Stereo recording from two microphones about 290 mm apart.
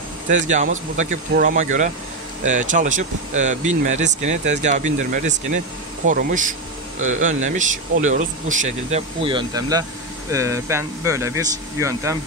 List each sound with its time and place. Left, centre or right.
0.3 s speech: right; by 12.2 s centre